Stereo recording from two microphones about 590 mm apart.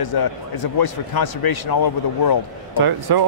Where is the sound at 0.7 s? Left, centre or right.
Left.